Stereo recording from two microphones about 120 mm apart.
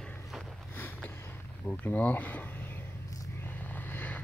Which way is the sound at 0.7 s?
15° left (ahead or behind).